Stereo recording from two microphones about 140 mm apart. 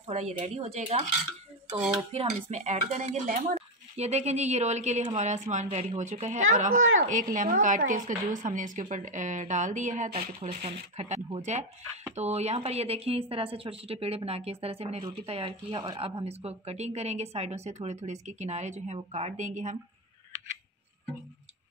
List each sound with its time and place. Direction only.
0.0 s speech: 50° right (ahead or behind)
2.1 s speech: 55° right (ahead or behind)